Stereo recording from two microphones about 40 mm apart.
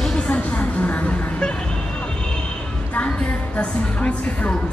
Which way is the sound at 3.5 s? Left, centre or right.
Left.